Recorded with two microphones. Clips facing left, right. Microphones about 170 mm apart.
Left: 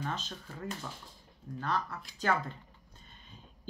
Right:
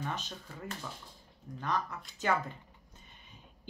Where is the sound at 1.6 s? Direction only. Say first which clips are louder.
Even; 15° right (ahead or behind).